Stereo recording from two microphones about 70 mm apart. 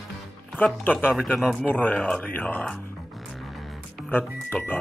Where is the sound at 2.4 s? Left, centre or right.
Centre.